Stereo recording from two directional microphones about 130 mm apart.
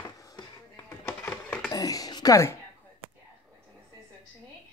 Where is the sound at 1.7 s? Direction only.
25° left (ahead or behind).